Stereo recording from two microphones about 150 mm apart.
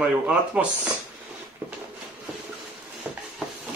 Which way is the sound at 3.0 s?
Centre (ahead or behind).